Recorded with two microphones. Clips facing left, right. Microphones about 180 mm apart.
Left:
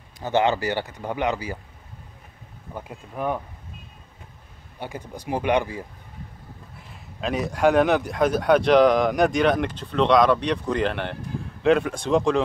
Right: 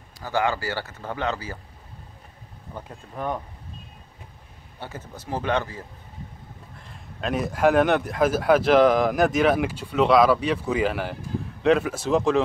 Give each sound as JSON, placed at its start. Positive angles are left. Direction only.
{"t": 0.2, "sound": "speech", "side_deg": 20}
{"t": 3.2, "sound": "speech", "side_deg": 10}
{"t": 4.7, "sound": "speech", "side_deg": 15}
{"t": 6.8, "sound": "speech", "side_deg": 5}